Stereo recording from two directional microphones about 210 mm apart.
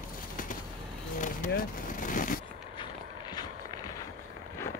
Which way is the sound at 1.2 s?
40° left (ahead or behind).